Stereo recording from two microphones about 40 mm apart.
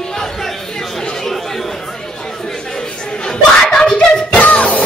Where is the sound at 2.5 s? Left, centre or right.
Centre.